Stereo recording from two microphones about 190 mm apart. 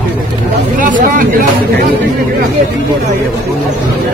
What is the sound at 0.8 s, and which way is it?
Speech, 45° right (ahead or behind).